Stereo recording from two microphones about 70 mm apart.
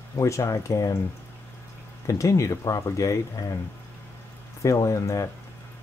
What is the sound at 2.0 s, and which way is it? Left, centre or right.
Speech, left.